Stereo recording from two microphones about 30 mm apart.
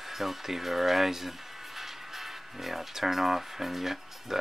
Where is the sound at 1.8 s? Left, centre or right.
Centre.